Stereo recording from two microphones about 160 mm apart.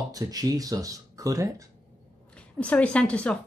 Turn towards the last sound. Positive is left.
turn(degrees=5)  # may be behind; listen again after turning